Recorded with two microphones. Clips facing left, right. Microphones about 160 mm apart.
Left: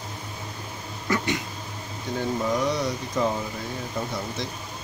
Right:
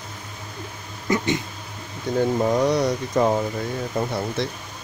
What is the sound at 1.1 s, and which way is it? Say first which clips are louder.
Speech: right 3 dB; 20° right (ahead or behind).